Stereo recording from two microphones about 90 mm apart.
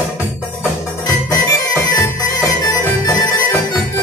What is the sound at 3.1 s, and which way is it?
Music, 45° left (ahead or behind).